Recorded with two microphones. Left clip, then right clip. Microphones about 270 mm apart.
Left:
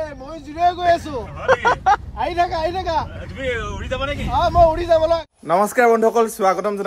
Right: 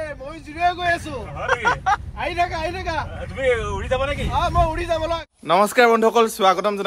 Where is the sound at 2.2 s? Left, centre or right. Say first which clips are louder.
Left 3 dB; left.